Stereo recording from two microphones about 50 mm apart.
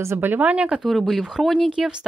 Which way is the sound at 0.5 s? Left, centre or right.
Right.